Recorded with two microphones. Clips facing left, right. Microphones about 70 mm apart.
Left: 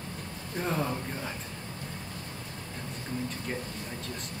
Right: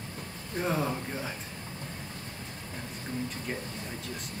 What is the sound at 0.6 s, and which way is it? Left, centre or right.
Speech, centre.